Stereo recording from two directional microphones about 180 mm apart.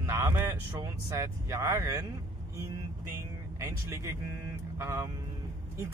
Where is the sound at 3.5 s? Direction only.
15° right (ahead or behind).